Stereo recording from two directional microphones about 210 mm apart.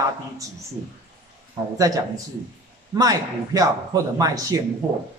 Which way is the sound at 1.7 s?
15° right (ahead or behind).